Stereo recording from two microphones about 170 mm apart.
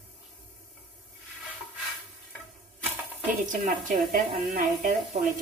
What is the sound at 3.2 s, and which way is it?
A woman's voice, 50° right (ahead or behind).